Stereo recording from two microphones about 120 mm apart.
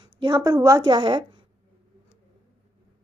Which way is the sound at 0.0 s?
40° right (ahead or behind).